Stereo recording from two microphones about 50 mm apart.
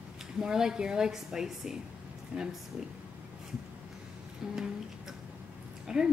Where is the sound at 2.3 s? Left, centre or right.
Right.